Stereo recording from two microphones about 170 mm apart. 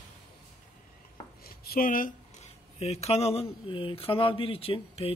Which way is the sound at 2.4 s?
40° left (ahead or behind).